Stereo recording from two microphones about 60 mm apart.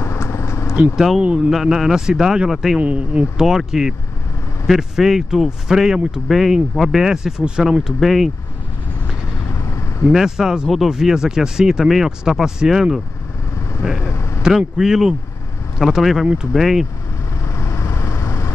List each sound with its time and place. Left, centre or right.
0.0 s vehicle: left
0.9 s speech: centre
2.8 s speech: right
3.4 s speech: centre
9.6 s vehicle: left
10.1 s speech: centre
14.0 s vehicle: left
14.8 s speech: centre
17.5 s vehicle: left